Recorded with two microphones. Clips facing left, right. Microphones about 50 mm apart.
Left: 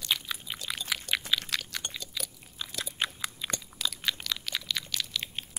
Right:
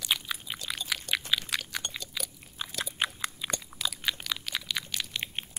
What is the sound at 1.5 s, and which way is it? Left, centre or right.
Biting, centre.